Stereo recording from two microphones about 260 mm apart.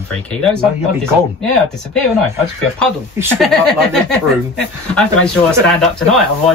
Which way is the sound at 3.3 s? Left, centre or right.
Centre.